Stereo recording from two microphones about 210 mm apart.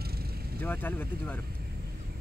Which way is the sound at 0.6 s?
10° left (ahead or behind).